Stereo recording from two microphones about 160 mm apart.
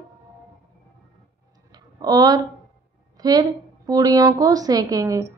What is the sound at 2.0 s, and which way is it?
A woman's voice, 25° right (ahead or behind).